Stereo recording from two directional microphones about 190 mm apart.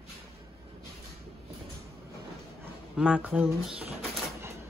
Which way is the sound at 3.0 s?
5° right (ahead or behind).